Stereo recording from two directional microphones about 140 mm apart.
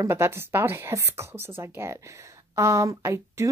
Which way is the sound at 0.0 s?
15° right (ahead or behind).